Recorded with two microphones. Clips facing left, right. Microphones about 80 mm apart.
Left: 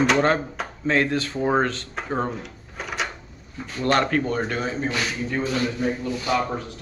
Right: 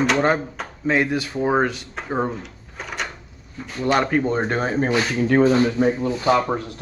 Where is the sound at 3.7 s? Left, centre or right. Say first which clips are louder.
Right 1 dB; centre.